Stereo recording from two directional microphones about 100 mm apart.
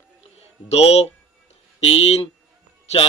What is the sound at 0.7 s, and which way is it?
Speech, 90° left.